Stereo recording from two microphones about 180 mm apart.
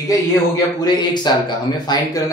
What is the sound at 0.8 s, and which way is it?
Speech, 25° left (ahead or behind).